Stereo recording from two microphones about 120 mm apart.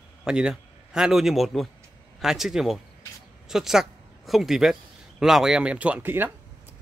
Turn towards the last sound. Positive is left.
turn(degrees=-15)  # may be behind; listen again after turning